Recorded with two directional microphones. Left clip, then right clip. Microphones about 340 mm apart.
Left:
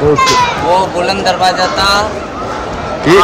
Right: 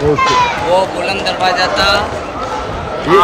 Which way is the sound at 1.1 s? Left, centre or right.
Centre.